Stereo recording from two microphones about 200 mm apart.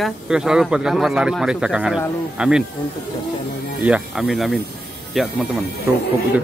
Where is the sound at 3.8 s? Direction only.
5° right (ahead or behind).